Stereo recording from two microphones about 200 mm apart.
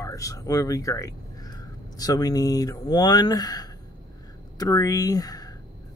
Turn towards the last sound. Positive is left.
turn(degrees=20)  # may be behind; listen again after turning